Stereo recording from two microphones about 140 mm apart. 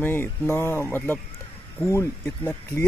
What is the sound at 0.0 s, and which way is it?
Speech, 15° left (ahead or behind).